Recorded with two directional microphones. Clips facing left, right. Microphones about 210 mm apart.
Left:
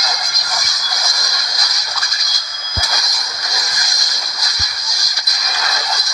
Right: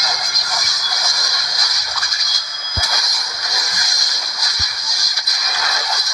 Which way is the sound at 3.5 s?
40° left (ahead or behind).